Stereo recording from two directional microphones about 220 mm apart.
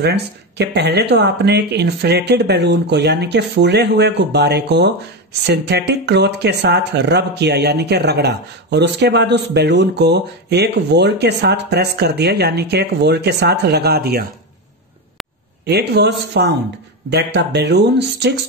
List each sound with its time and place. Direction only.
0.0 s speech: 50° right (ahead or behind)
15.6 s speech: 50° right (ahead or behind)